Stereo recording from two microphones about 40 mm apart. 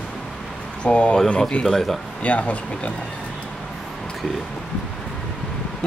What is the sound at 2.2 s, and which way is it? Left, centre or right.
Speech, left.